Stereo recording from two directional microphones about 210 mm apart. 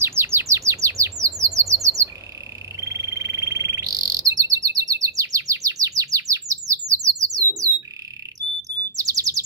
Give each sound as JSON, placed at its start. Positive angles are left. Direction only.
{"t": 0.0, "sound": "bird", "side_deg": -10}